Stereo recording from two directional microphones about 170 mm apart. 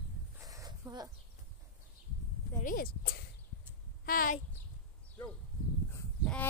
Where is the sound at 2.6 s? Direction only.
55° left (ahead or behind).